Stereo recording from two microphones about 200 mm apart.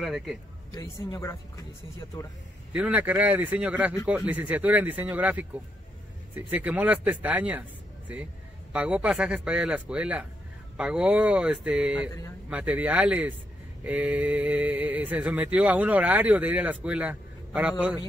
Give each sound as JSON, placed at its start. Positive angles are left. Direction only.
{"t": 0.0, "sound": "speech", "side_deg": 0}
{"t": 0.7, "sound": "speech", "side_deg": 15}
{"t": 2.7, "sound": "speech", "side_deg": -5}
{"t": 8.7, "sound": "speech", "side_deg": -5}